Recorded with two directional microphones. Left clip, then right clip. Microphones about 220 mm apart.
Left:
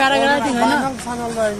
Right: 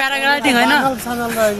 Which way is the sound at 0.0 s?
10° right (ahead or behind).